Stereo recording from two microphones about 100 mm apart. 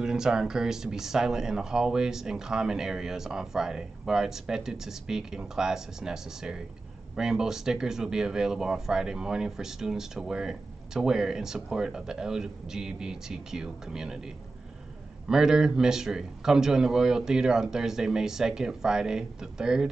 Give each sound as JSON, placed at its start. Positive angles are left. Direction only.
{"t": 0.0, "sound": "speech", "side_deg": -5}